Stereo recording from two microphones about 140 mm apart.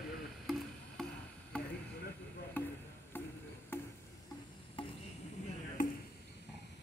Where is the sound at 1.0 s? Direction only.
Centre (ahead or behind).